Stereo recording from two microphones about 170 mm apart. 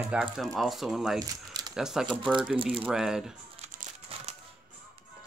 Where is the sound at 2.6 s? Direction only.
30° right (ahead or behind).